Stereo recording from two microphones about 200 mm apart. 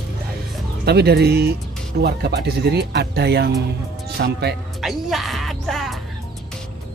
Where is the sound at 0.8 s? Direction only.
55° right (ahead or behind).